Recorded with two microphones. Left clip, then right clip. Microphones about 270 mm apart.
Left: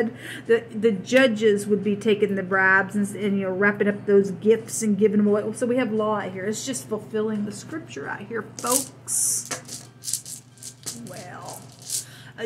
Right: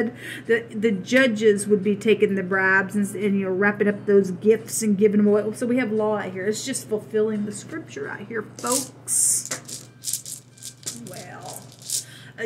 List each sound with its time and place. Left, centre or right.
0.2 s a man's voice: right